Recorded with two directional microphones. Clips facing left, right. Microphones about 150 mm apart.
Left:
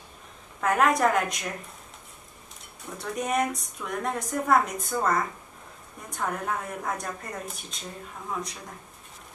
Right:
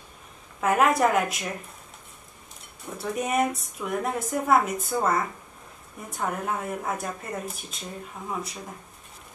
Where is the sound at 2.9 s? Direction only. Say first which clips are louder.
Right 1 dB; 5° right (ahead or behind).